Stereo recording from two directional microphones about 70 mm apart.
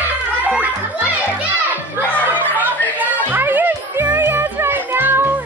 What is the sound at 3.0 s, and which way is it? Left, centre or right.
Music, right.